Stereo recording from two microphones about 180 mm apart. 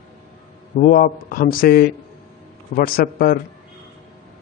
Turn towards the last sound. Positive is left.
turn(degrees=55)  # may be behind; listen again after turning